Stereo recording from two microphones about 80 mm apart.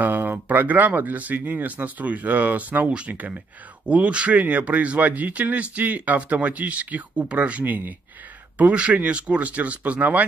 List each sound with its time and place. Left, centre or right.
0.0 s speech: right